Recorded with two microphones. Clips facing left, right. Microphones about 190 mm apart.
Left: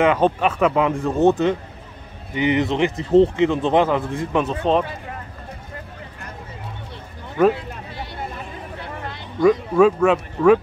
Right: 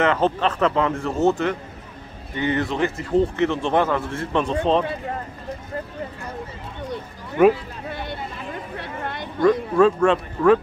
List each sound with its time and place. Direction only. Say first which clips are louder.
0.0 s speech: left 2 dB; 10° left (ahead or behind)
4.4 s speech: even; 5° left (ahead or behind)
8.7 s a sound: right 1 dB; 60° right (ahead or behind)
9.4 s speech: left 2 dB; 10° left (ahead or behind)